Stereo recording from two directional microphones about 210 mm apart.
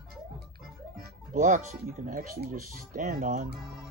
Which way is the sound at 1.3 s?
35° right (ahead or behind).